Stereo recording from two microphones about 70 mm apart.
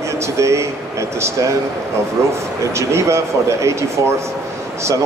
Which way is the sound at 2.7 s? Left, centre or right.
Right.